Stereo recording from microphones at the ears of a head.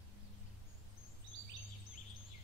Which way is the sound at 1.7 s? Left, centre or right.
Left.